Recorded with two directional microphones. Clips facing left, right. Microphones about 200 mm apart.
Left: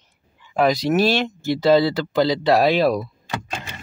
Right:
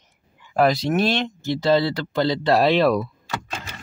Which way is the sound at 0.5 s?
Centre (ahead or behind).